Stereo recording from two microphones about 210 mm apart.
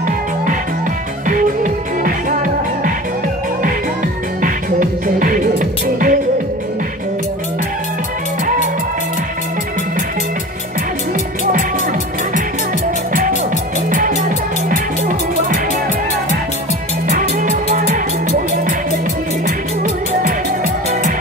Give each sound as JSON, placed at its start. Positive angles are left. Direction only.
{"t": 1.2, "sound": "music", "side_deg": -40}
{"t": 4.4, "sound": "music", "side_deg": -40}
{"t": 13.8, "sound": "music", "side_deg": -40}
{"t": 17.1, "sound": "music", "side_deg": -40}
{"t": 19.4, "sound": "music", "side_deg": -45}